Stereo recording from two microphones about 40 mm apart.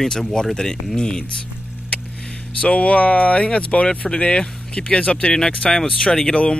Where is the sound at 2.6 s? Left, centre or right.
Left.